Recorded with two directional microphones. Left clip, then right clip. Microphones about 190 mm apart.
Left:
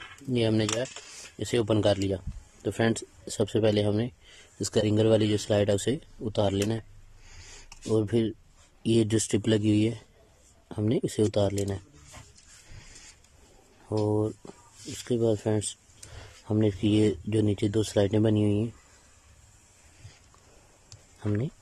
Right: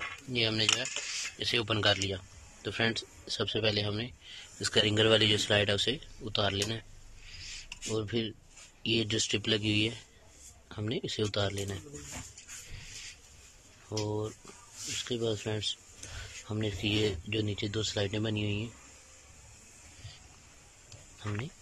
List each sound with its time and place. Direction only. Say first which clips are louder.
0.3 s speech: left 2 dB; 35° left (ahead or behind)
7.9 s speech: left 8 dB; 35° left (ahead or behind)
13.8 s speech: left 8 dB; 25° left (ahead or behind)